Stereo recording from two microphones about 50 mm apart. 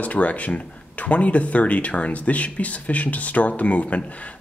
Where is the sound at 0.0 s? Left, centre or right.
Left.